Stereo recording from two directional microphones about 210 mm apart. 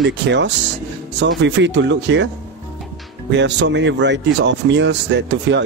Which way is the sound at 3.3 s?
55° right (ahead or behind).